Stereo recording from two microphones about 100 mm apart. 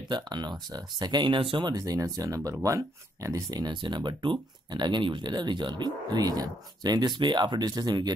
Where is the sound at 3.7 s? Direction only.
50° right (ahead or behind).